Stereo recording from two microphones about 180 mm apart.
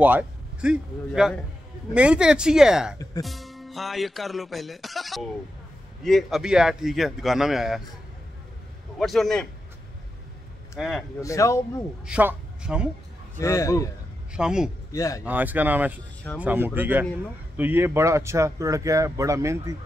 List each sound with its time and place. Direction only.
0.0 s a man's voice: 10° right (ahead or behind)
8.9 s speech: centre (ahead or behind)
10.8 s speech: centre (ahead or behind)
11.1 s a man's voice: 15° left (ahead or behind)
12.1 s a man's voice: 10° right (ahead or behind)
13.4 s a man's voice: 15° left (ahead or behind)
14.3 s speech: 5° right (ahead or behind)
14.9 s a man's voice: 20° left (ahead or behind)
15.2 s speech: 10° right (ahead or behind)